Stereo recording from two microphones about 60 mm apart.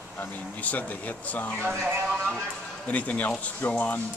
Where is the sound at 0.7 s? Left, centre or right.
Left.